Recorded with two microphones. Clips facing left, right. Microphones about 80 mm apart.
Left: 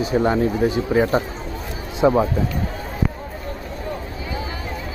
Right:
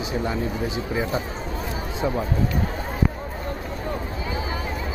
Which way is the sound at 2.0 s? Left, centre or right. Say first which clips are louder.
Left 10 dB; left.